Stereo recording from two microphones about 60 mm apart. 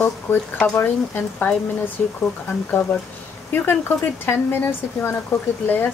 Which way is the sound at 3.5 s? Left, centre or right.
Left.